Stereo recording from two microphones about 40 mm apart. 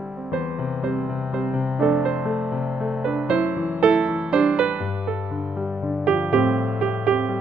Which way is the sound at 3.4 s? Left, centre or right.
Right.